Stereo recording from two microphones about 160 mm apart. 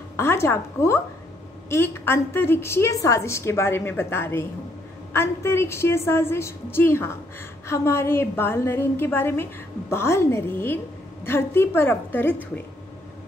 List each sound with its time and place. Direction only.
0.1 s a woman's voice: 15° left (ahead or behind)